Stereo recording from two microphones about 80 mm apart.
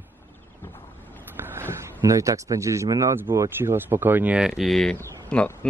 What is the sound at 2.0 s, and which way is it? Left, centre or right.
Speech, right.